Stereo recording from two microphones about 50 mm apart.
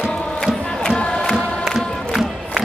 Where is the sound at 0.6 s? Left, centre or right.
Centre.